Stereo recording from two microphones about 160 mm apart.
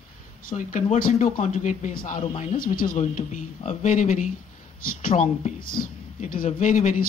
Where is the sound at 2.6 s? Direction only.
60° left (ahead or behind).